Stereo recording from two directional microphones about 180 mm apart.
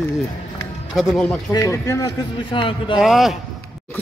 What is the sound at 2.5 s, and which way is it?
Speech, 30° left (ahead or behind).